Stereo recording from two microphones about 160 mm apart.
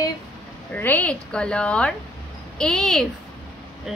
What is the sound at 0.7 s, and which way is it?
Speech, 10° left (ahead or behind).